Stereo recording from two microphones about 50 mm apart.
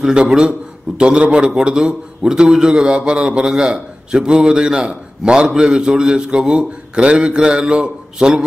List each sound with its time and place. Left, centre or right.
0.9 s a man's voice: centre